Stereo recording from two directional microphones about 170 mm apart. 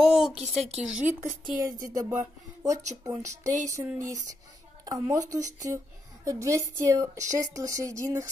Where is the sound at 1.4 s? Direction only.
20° right (ahead or behind).